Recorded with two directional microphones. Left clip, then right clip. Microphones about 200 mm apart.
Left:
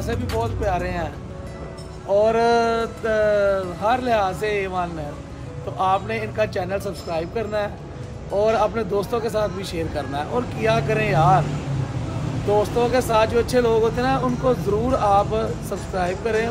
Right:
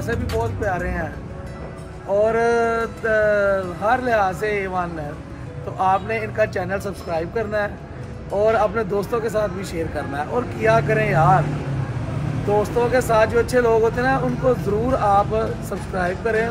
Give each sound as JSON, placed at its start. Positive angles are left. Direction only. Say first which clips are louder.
{"t": 0.1, "sound": "speech", "louder": "right 1 dB", "side_deg": 0}
{"t": 0.6, "sound": "speech", "louder": "even", "side_deg": 15}
{"t": 2.2, "sound": "speech", "louder": "even", "side_deg": 15}
{"t": 12.5, "sound": "speech", "louder": "right 1 dB", "side_deg": 5}